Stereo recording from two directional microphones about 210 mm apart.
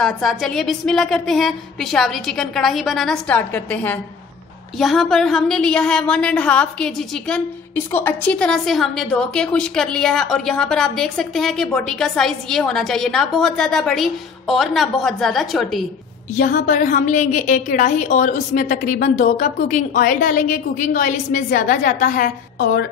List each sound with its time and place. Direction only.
0.0 s a woman's voice: centre (ahead or behind)
16.3 s a woman's voice: 40° left (ahead or behind)